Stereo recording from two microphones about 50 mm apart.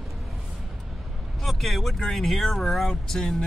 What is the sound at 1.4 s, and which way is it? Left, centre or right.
Speech, centre.